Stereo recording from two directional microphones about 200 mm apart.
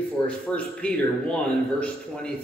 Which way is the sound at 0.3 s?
5° left (ahead or behind).